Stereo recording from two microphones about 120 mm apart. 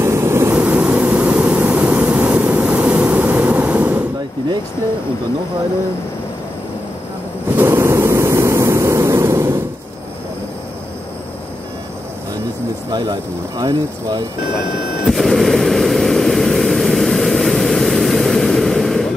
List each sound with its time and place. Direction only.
0.0 s vehicle: 20° right (ahead or behind)
7.5 s waves: 20° right (ahead or behind)
12.9 s speech: 35° right (ahead or behind)
15.0 s vehicle: centre (ahead or behind)